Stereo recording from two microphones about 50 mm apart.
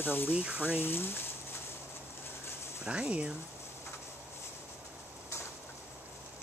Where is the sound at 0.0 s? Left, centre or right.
Left.